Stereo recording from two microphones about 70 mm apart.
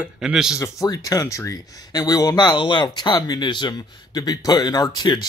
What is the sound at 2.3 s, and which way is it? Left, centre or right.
Speech, left.